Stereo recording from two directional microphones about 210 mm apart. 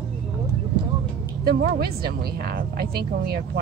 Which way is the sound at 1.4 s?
50° right (ahead or behind).